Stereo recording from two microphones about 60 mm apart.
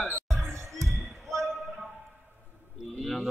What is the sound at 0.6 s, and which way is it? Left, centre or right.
Basketball bounce, right.